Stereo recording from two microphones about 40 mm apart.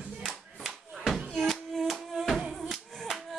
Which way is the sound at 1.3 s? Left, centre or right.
Centre.